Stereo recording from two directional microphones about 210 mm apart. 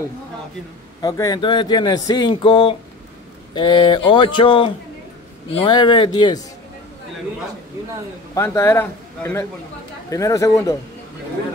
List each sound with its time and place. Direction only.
1.0 s speech: 15° left (ahead or behind)
8.4 s speech: 10° left (ahead or behind)